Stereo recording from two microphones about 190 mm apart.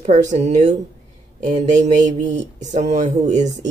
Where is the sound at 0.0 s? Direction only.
40° right (ahead or behind).